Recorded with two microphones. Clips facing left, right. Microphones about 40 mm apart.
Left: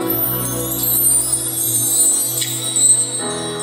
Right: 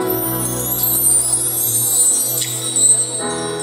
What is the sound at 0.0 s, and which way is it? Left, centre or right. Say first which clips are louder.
Music: right 2 dB; left.